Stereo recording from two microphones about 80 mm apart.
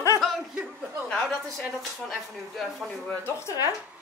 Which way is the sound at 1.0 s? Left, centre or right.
Centre.